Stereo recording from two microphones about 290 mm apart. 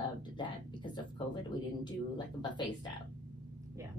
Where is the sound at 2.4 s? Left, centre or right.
Centre.